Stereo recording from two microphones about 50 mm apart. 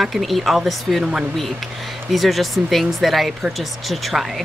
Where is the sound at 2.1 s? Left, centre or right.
Centre.